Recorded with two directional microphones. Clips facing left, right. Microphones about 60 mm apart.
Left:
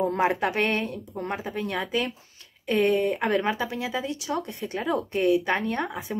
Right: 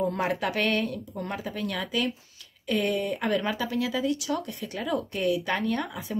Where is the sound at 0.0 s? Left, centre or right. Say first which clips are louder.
Left 3 dB; left.